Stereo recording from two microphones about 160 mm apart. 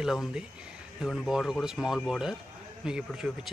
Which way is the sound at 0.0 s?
5° right (ahead or behind).